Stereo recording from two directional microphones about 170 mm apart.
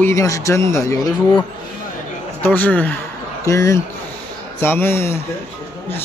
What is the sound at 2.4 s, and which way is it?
Speech, 10° left (ahead or behind).